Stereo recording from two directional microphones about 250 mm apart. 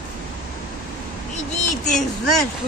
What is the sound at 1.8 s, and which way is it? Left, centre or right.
Speech, centre.